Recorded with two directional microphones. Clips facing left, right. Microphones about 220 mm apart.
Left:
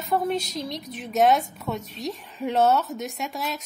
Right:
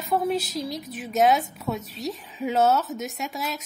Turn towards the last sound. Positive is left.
turn(degrees=0)  # may be behind; listen again after turning